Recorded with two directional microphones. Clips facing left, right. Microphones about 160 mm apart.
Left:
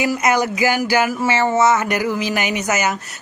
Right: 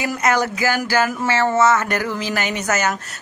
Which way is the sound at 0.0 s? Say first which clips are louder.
Left 2 dB; 10° left (ahead or behind).